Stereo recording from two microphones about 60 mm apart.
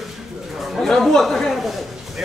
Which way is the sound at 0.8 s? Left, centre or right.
Centre.